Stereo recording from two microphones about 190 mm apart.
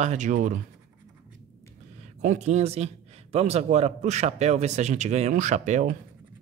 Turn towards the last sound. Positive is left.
turn(degrees=-40)  # may be behind; listen again after turning